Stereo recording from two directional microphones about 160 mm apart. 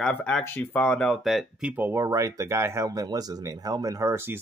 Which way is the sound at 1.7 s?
15° right (ahead or behind).